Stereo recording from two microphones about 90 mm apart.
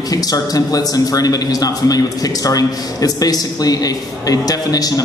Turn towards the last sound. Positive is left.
turn(degrees=45)  # may be behind; listen again after turning